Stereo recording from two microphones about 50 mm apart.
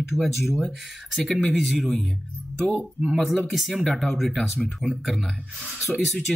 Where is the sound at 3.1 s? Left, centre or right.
Centre.